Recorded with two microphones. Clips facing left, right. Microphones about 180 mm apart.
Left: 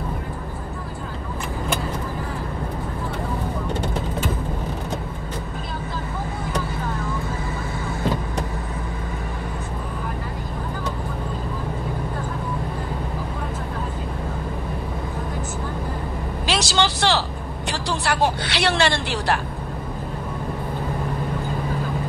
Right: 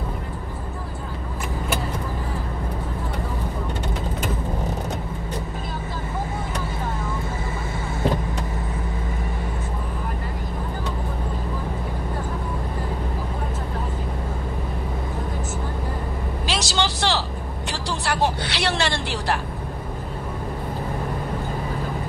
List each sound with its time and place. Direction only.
16.4 s vehicle: 65° left (ahead or behind)